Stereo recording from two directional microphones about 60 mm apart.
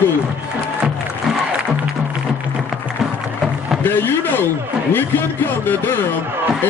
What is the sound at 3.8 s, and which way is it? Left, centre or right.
Speech, left.